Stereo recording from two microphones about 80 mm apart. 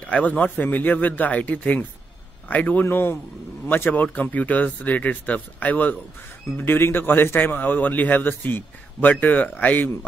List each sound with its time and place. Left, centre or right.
0.0 s a man's voice: centre